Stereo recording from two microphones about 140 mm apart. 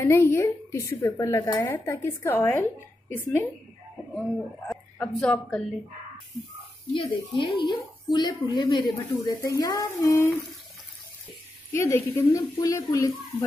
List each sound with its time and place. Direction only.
0.0 s a woman's voice: 20° left (ahead or behind)
6.9 s speech: 35° left (ahead or behind); by 10.3 s 20° left (ahead or behind)
11.7 s speech: 15° left (ahead or behind)